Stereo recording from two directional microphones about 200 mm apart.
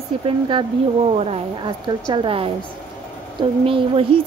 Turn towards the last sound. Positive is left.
turn(degrees=-25)  # may be behind; listen again after turning